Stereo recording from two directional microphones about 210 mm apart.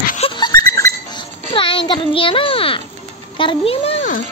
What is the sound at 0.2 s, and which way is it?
Goat, 20° left (ahead or behind).